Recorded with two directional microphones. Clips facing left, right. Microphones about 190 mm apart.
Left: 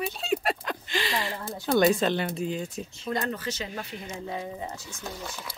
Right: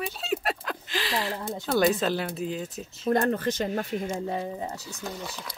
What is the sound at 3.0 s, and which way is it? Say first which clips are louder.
Speech: right 7 dB; 50° right (ahead or behind).